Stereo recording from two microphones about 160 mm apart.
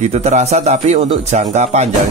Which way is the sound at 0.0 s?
45° right (ahead or behind).